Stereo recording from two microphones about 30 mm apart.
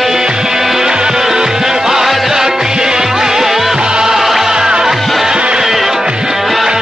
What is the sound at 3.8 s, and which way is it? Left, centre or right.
Music, right.